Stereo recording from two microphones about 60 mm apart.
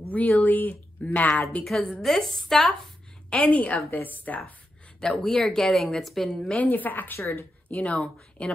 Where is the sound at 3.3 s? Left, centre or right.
Left.